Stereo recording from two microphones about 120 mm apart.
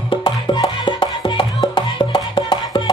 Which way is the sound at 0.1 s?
40° left (ahead or behind).